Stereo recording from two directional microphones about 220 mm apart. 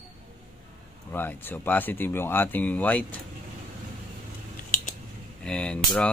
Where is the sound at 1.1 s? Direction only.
10° left (ahead or behind).